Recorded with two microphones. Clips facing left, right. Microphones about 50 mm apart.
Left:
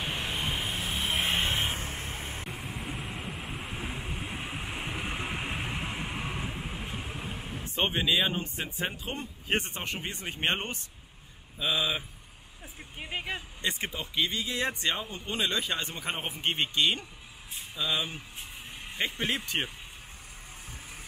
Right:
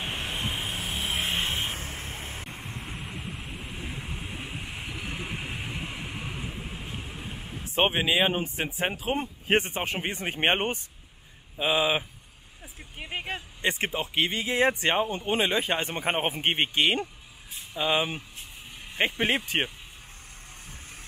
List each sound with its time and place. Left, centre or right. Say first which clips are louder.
0.0 s vehicle: even; centre
4.8 s vehicle: left 2 dB; left
5.2 s a sound: left 1 dB; centre
6.0 s vehicle: left 1 dB; centre
7.8 s speech: right 4 dB; centre
8.6 s speech: right 5 dB; right
9.2 s speech: right 4 dB; right
13.1 s speech: right 1 dB; right